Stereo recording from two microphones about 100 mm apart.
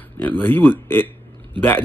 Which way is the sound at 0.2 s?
20° left (ahead or behind).